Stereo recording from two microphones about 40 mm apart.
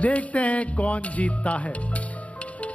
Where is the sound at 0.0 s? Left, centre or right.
Left.